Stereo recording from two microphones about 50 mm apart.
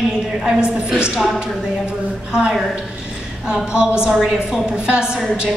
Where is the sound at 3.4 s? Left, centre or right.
Centre.